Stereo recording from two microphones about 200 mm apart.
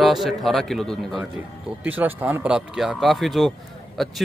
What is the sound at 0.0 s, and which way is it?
Speech, centre (ahead or behind).